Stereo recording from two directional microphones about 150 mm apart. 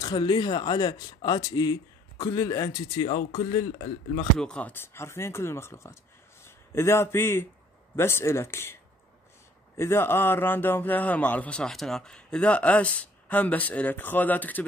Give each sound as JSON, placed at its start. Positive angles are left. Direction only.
{"t": 0.0, "sound": "a man's voice", "side_deg": 30}
{"t": 3.0, "sound": "speech", "side_deg": 35}
{"t": 4.4, "sound": "a man's voice", "side_deg": 5}
{"t": 9.8, "sound": "a man's voice", "side_deg": 15}